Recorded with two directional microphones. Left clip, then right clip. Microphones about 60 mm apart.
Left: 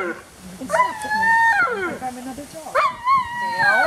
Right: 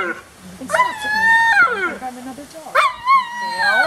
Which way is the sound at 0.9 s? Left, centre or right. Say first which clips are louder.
Right 3 dB; right.